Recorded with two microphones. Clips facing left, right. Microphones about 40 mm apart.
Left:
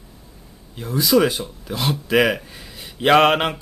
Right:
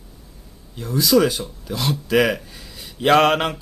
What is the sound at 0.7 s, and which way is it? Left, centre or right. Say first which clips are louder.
Speech: even; centre.